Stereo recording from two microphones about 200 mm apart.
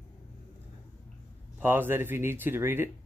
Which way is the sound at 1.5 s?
10° right (ahead or behind).